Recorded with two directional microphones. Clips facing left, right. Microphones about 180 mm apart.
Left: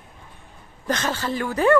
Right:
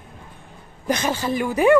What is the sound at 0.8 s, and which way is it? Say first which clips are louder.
Speech: right 3 dB; 15° right (ahead or behind).